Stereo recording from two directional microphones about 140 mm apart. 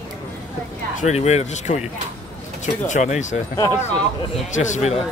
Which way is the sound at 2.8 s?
60° left (ahead or behind).